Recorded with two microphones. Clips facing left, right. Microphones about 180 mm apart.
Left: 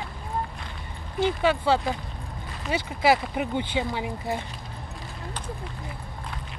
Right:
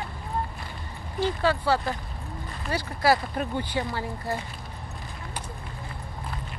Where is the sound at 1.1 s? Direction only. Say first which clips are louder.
Left 2 dB; 20° left (ahead or behind).